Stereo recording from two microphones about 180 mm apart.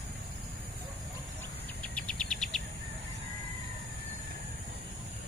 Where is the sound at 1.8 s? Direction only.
5° left (ahead or behind).